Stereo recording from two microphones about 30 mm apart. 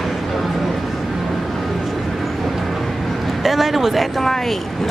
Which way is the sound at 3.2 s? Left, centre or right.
Centre.